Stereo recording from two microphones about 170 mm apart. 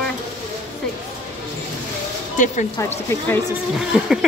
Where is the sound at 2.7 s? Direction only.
15° left (ahead or behind).